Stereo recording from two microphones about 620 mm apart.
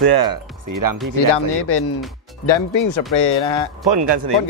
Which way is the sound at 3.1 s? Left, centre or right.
Left.